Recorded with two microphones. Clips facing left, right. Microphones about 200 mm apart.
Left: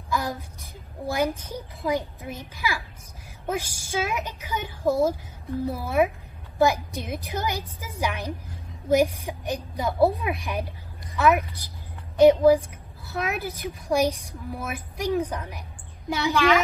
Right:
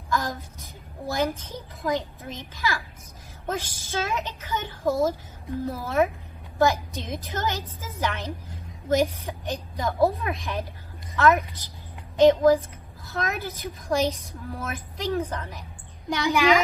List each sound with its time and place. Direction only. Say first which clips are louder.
0.1 s a woman's voice: even; 10° left (ahead or behind)
16.3 s speech: right 1 dB; 15° right (ahead or behind)